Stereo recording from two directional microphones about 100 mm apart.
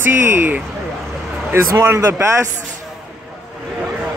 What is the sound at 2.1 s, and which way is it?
Speech, 30° right (ahead or behind).